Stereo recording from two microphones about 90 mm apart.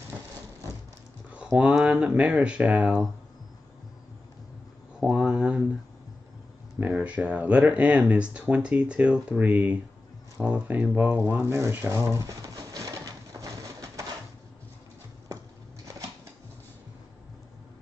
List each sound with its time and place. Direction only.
1.3 s speech: 10° right (ahead or behind)
5.0 s a sound: 10° right (ahead or behind)
7.0 s speech: 15° right (ahead or behind); by 11.7 s 30° right (ahead or behind)
11.7 s pigeon: 35° right (ahead or behind)